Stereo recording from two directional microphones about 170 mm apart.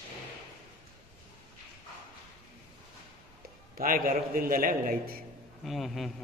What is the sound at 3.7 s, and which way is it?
A man's voice, 55° right (ahead or behind).